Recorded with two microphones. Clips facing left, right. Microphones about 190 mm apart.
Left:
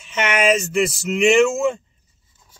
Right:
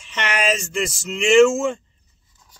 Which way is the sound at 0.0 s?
5° left (ahead or behind).